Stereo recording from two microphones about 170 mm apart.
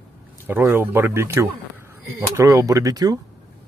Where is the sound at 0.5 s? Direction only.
10° right (ahead or behind).